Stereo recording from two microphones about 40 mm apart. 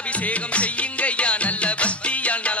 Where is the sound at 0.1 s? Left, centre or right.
Left.